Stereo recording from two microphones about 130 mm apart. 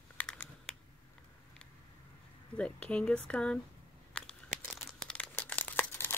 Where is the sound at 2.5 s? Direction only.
10° left (ahead or behind).